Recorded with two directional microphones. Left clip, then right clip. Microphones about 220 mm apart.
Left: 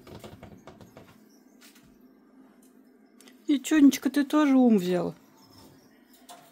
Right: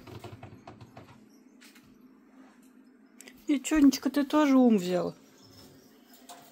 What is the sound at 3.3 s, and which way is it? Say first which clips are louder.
Speech: left 3 dB; 30° left (ahead or behind).